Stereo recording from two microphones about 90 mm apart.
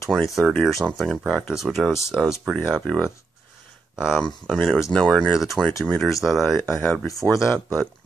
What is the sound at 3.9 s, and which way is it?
Speech, 5° right (ahead or behind).